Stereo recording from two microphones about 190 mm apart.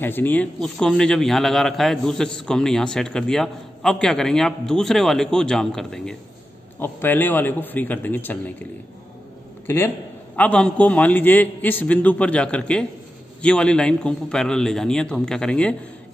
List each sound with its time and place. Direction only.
0.0 s a man's voice: 10° left (ahead or behind)
9.7 s a man's voice: 10° left (ahead or behind)